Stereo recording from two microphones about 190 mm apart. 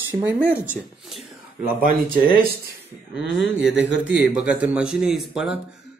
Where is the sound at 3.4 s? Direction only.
5° right (ahead or behind).